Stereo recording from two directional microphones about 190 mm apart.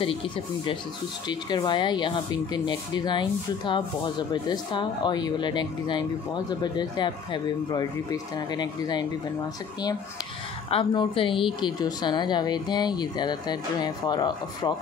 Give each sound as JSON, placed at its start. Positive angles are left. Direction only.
{"t": 1.3, "sound": "speech", "side_deg": 25}
{"t": 10.7, "sound": "speech", "side_deg": 25}